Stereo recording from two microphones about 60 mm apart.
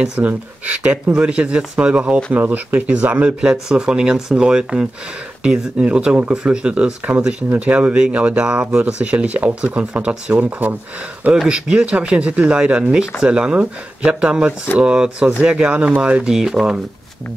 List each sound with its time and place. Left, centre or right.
0.2 s speech: right
3.3 s speech: centre
10.4 s speech: right
11.4 s speech: centre
16.3 s speech: centre